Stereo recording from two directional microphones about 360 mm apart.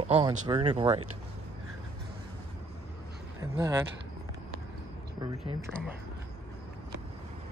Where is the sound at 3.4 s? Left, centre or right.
Centre.